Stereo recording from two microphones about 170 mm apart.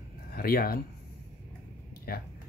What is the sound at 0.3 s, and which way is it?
Speech, 60° left (ahead or behind).